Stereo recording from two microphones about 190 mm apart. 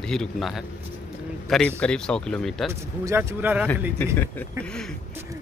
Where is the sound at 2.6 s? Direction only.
15° right (ahead or behind).